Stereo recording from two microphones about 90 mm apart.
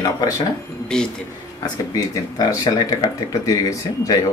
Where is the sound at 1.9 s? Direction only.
40° left (ahead or behind).